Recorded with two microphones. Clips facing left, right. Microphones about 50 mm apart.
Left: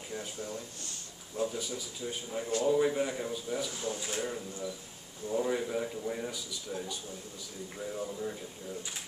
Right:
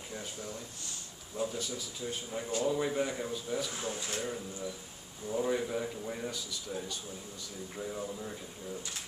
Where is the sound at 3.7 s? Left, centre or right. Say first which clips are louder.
Left 1 dB; centre.